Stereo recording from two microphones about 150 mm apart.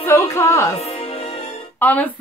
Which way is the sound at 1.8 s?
10° left (ahead or behind).